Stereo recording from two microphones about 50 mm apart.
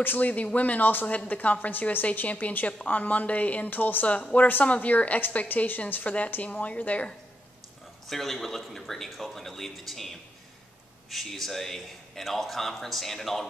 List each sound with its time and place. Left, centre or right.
0.0 s speech: left
4.2 s a woman's voice: left
8.1 s speech: centre